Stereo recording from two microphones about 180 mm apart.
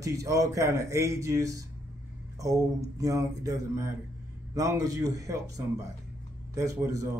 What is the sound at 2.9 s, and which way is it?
Speech, 20° right (ahead or behind).